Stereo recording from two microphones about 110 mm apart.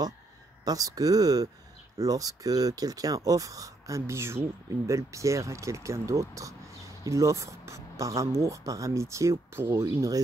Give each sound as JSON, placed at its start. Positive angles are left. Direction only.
{"t": 0.7, "sound": "speech", "side_deg": -35}